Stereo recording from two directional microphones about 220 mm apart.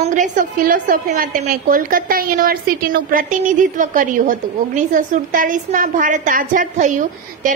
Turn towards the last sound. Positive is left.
turn(degrees=-35)  # may be behind; listen again after turning